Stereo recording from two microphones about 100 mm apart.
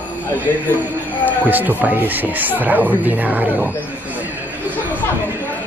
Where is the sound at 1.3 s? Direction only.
15° right (ahead or behind).